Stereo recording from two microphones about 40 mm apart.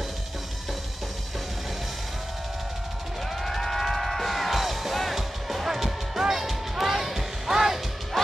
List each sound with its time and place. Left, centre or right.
3.4 s music: centre